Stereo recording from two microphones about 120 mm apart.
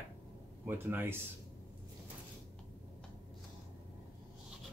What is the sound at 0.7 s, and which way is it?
Speech, 20° right (ahead or behind).